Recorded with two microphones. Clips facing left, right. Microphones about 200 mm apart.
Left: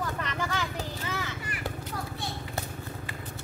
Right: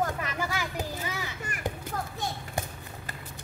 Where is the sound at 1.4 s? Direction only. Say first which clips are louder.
Even; 45° right (ahead or behind).